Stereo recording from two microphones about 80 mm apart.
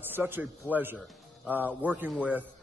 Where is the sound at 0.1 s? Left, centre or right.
Right.